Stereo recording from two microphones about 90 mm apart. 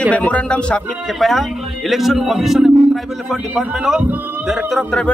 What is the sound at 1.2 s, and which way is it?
A man's voice, centre (ahead or behind).